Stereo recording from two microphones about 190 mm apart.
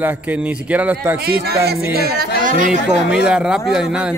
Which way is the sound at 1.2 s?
55° right (ahead or behind).